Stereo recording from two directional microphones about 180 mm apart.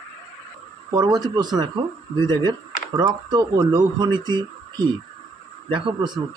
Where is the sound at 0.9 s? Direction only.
20° right (ahead or behind).